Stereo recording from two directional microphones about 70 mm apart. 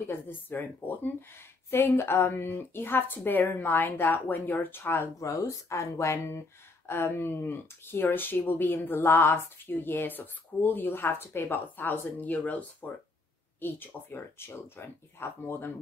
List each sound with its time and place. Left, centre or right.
0.1 s speech: left
1.7 s speech: left
5.2 s speech: left